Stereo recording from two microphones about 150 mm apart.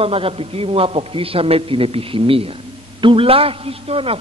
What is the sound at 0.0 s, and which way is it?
A man's voice, 40° right (ahead or behind).